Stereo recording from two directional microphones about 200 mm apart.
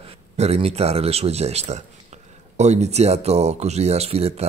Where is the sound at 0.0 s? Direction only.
30° right (ahead or behind).